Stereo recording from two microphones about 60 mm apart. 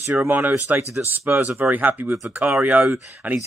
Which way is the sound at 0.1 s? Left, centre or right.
Right.